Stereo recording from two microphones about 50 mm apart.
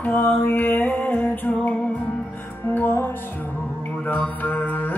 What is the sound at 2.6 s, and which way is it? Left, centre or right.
Music, left.